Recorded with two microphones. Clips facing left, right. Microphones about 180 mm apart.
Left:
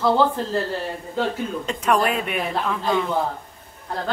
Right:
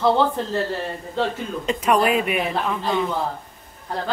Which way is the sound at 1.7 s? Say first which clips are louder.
Right 3 dB; 10° right (ahead or behind).